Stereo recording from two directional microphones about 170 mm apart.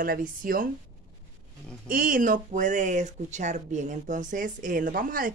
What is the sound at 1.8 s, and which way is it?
Speech, 55° right (ahead or behind).